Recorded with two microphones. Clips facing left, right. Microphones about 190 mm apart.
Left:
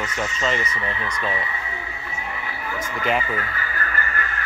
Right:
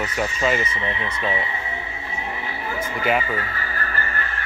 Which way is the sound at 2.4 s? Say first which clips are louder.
Right 2 dB; 30° right (ahead or behind).